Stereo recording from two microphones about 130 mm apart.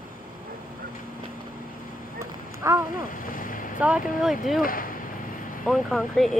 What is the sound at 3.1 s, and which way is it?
Vehicle, 90° left.